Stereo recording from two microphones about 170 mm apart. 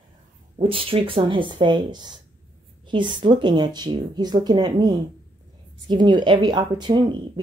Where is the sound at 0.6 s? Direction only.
30° right (ahead or behind).